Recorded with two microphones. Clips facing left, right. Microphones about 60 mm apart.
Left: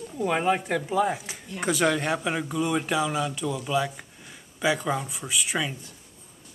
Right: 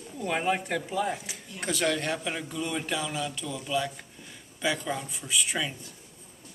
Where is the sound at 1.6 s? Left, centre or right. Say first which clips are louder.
Left 4 dB; centre.